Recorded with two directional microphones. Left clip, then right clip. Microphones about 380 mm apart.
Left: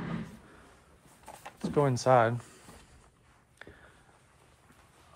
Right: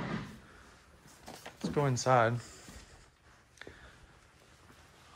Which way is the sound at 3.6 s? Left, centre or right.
Centre.